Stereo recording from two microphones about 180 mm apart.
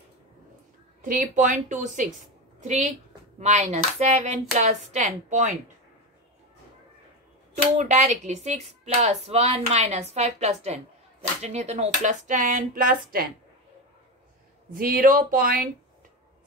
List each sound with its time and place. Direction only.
1.0 s speech: 45° right (ahead or behind)
7.7 s speech: 40° right (ahead or behind)
14.7 s speech: 50° right (ahead or behind)